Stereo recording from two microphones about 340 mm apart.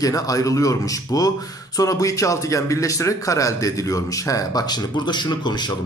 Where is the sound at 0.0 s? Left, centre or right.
Centre.